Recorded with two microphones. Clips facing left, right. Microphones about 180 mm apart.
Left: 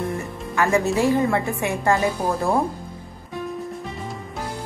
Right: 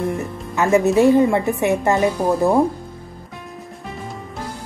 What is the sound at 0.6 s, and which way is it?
A woman's voice, 20° right (ahead or behind).